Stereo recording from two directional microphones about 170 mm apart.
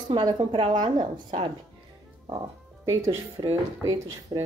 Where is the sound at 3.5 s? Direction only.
20° right (ahead or behind).